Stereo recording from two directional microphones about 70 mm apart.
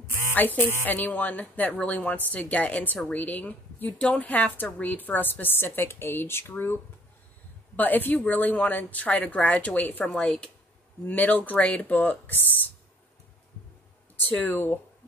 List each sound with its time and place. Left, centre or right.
0.3 s a woman's voice: left
7.7 s a woman's voice: left
10.0 s a woman's voice: centre; by 12.7 s left
14.5 s a woman's voice: left